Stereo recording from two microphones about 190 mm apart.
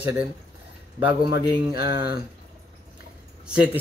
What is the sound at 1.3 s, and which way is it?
Speech, 55° left (ahead or behind).